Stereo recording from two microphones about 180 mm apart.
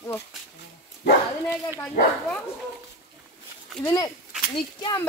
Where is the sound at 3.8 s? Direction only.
20° left (ahead or behind).